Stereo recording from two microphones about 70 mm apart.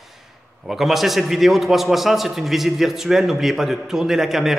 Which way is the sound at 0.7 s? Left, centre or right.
Centre.